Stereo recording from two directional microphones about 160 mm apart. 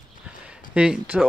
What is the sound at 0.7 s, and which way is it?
Speech, 5° right (ahead or behind).